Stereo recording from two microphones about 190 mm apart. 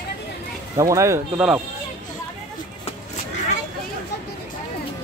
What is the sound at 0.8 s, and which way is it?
Speech, 15° right (ahead or behind).